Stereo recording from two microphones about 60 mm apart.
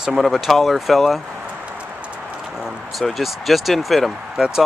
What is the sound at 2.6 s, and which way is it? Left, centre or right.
Speech, centre.